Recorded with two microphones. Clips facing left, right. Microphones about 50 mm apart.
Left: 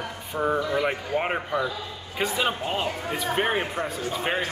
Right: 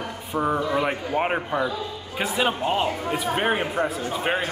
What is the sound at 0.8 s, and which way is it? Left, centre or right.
A man's voice, centre.